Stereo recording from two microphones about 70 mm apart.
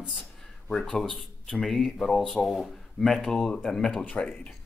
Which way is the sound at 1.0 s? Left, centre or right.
Centre.